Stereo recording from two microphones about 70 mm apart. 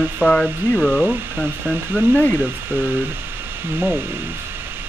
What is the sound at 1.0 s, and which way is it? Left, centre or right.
Speech, centre.